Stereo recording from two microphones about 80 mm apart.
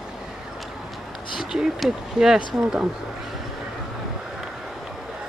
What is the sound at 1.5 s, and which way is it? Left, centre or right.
Speech, centre.